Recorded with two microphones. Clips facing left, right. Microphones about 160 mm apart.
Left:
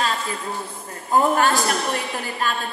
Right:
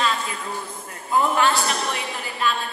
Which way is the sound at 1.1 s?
45° left (ahead or behind).